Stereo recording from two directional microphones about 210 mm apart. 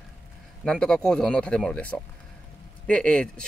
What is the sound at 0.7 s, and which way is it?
Speech, 5° left (ahead or behind).